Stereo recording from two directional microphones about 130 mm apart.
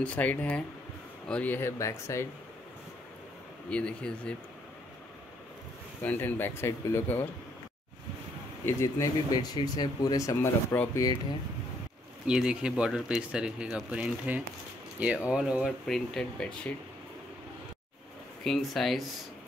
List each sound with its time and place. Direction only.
0.0 s speech: 10° left (ahead or behind)
3.7 s speech: 10° left (ahead or behind)
6.0 s speech: 15° left (ahead or behind)
8.6 s speech: 25° left (ahead or behind)
12.3 s speech: 5° right (ahead or behind)
15.9 s speech: 5° left (ahead or behind)
18.4 s speech: centre (ahead or behind)